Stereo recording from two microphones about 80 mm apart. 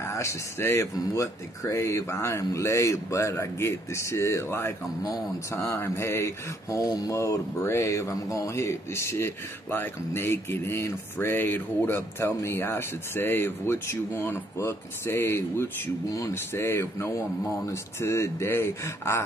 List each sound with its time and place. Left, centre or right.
0.0 s speech: left